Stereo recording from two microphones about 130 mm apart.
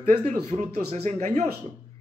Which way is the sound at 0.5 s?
55° right (ahead or behind).